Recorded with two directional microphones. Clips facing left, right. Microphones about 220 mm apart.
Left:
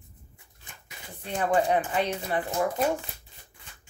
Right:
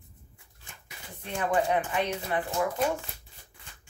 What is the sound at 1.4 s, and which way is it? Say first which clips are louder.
Speech: left 2 dB; 30° left (ahead or behind).